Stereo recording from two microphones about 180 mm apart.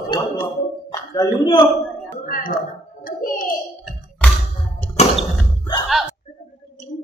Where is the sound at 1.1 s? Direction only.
20° left (ahead or behind).